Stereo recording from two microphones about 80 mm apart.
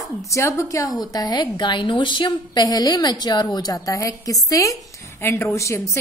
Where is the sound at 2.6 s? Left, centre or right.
Left.